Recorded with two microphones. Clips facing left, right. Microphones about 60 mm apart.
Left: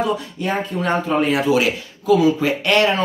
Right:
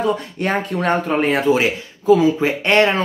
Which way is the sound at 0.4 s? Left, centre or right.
Right.